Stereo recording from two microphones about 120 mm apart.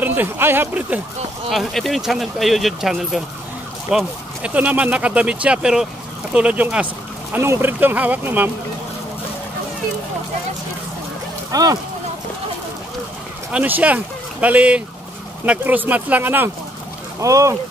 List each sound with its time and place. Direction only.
0.0 s speech: 15° right (ahead or behind)
1.5 s speech: centre (ahead or behind); by 8.5 s 15° right (ahead or behind)
11.5 s speech: 30° right (ahead or behind)
13.5 s speech: 15° right (ahead or behind)
17.2 s speech: 25° right (ahead or behind)